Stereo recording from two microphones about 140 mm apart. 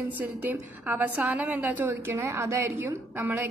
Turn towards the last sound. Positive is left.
turn(degrees=-15)  # may be behind; listen again after turning